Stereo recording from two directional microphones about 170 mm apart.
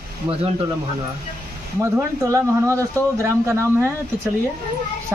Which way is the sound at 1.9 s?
15° right (ahead or behind).